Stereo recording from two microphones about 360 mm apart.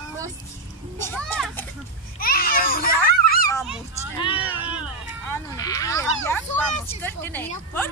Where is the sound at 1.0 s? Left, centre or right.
Centre.